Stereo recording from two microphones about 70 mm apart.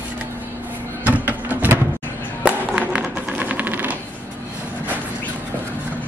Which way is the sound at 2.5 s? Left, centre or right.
Centre.